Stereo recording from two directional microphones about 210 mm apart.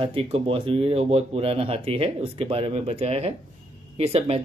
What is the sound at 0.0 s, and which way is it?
Speech, 25° right (ahead or behind).